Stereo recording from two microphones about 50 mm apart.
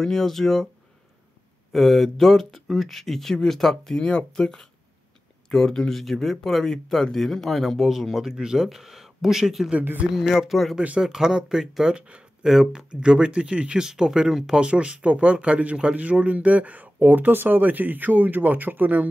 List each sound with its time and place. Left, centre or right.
0.0 s speech: centre
1.7 s speech: centre
4.0 s speech: left; by 14.7 s centre
14.7 s speech: right